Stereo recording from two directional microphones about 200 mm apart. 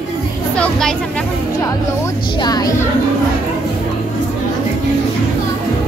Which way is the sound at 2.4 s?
20° left (ahead or behind).